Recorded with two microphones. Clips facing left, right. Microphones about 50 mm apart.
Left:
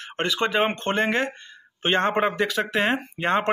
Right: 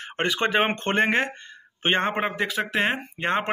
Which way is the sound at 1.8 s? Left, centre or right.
Right.